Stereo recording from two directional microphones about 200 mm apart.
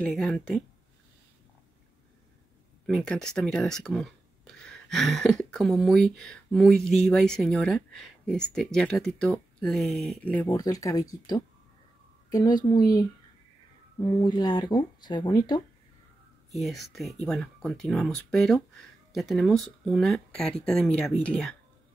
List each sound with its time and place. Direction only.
0.0 s speech: 5° left (ahead or behind)
2.9 s speech: centre (ahead or behind)
10.4 s speech: 20° left (ahead or behind)
16.5 s speech: centre (ahead or behind)